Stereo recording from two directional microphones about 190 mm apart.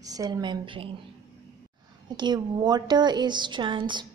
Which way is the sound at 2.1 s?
20° right (ahead or behind).